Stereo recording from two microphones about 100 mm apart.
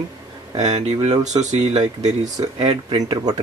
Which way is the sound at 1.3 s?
50° right (ahead or behind).